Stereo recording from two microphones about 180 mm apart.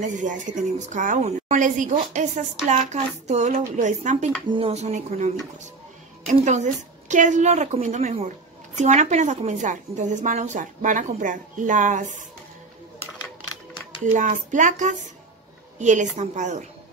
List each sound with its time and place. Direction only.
0.0 s a woman's voice: 45° right (ahead or behind)
4.5 s a woman's voice: 30° right (ahead or behind)
6.3 s a woman's voice: 40° right (ahead or behind)
14.1 s a woman's voice: 45° right (ahead or behind)